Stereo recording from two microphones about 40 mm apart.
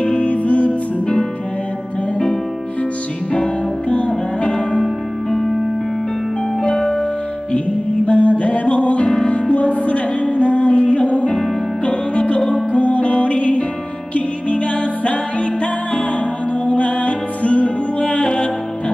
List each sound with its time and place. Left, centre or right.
0.0 s music: left
3.9 s music: left
5.3 s music: centre
6.6 s music: centre
7.5 s music: left
16.6 s music: left
18.0 s music: left